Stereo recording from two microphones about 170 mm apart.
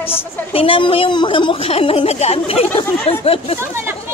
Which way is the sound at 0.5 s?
35° left (ahead or behind).